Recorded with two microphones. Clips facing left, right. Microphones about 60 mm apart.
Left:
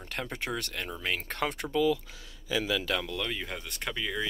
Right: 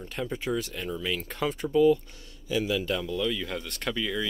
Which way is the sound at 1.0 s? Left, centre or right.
Left.